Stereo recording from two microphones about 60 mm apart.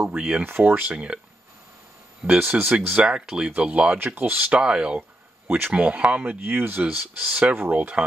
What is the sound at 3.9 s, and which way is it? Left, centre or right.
Speech, right.